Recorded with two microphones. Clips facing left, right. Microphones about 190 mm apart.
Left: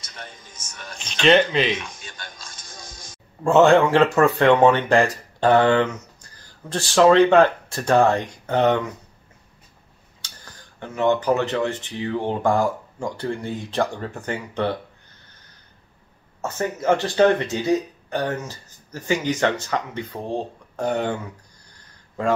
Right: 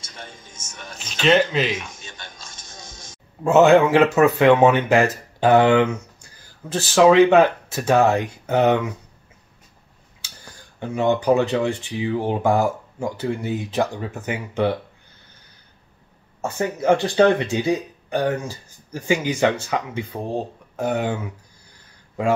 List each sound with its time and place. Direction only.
0.0 s speech: 25° right (ahead or behind)
0.9 s speech: 5° right (ahead or behind)
2.0 s music: 25° right (ahead or behind)
3.4 s speech: 5° right (ahead or behind)
10.2 s speech: 10° right (ahead or behind)
16.3 s speech: 15° right (ahead or behind)